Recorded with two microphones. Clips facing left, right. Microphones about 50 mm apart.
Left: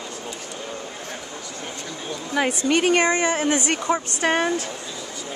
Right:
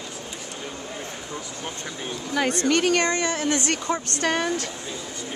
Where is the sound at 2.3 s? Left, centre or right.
Centre.